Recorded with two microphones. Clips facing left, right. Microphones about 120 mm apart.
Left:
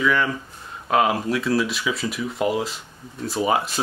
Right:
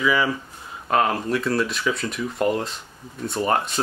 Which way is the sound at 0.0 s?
5° right (ahead or behind).